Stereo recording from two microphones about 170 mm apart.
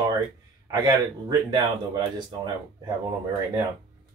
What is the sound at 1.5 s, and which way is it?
Speech, 25° right (ahead or behind).